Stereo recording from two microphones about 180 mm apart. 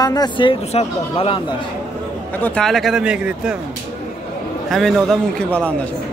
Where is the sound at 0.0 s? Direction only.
20° left (ahead or behind).